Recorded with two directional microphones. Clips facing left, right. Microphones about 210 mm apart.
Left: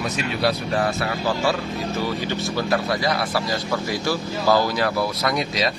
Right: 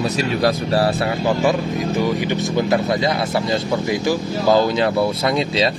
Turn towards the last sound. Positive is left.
turn(degrees=-25)  # may be behind; listen again after turning